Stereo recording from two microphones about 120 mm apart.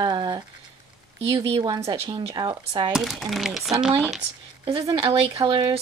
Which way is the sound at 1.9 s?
45° right (ahead or behind).